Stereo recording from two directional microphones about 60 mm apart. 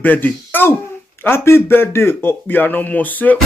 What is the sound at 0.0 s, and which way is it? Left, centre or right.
Speech, left.